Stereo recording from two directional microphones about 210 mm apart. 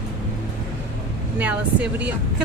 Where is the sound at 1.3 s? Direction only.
5° right (ahead or behind).